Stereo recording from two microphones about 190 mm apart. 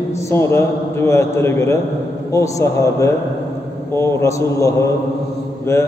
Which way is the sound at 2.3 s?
15° left (ahead or behind).